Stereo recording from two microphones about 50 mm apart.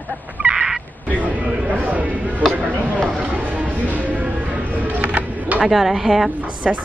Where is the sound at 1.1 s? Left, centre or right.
Right.